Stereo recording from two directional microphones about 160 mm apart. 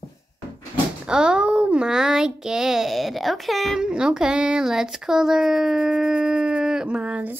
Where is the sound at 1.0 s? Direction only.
5° right (ahead or behind).